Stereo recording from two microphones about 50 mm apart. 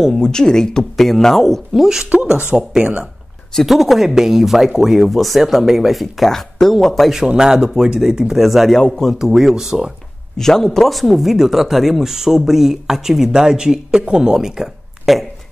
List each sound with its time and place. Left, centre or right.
0.1 s speech: centre
1.8 s speech: centre
2.8 s speech: right
3.6 s speech: centre
7.2 s speech: centre
8.7 s speech: centre
9.2 s speech: centre
10.3 s speech: centre